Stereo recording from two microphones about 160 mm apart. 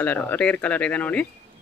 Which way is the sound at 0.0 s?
10° left (ahead or behind).